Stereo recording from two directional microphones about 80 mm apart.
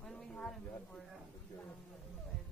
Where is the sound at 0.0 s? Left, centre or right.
Centre.